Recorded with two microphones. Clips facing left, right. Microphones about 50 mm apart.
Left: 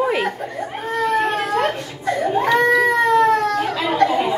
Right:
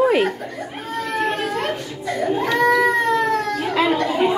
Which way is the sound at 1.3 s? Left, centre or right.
Left.